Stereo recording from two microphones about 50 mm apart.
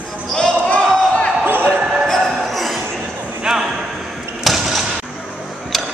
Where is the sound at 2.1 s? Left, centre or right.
Centre.